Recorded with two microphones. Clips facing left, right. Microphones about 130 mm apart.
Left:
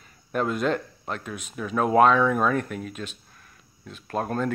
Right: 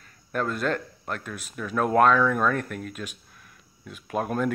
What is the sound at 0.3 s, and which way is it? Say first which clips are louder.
Speech: left 2 dB; 5° left (ahead or behind).